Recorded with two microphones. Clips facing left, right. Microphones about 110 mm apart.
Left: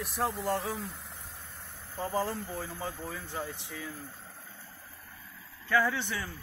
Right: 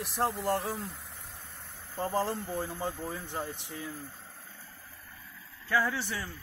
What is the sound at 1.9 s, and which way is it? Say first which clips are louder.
Speech: right 1 dB; centre (ahead or behind).